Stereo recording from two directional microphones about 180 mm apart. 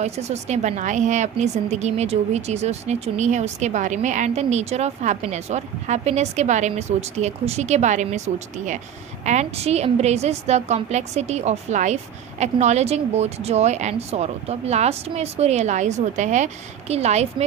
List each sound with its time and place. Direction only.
0.0 s a woman's voice: 40° right (ahead or behind)
9.2 s a woman's voice: 40° right (ahead or behind)